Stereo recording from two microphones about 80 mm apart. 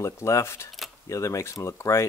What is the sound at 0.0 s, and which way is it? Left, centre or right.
Speech, left.